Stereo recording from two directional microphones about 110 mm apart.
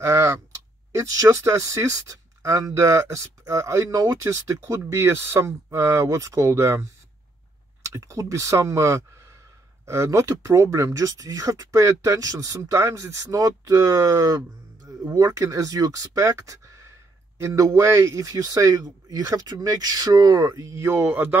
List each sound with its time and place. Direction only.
0.0 s a man's voice: 25° right (ahead or behind)